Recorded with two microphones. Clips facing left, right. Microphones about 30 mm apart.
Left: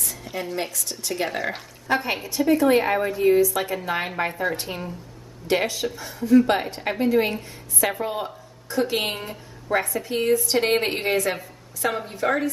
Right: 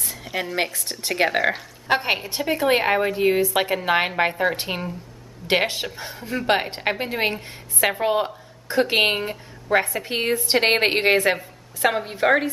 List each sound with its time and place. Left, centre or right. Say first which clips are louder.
0.0 s a sound: right 3 dB; right
0.6 s a woman's voice: right 4 dB; right
6.4 s a woman's voice: right 2 dB; right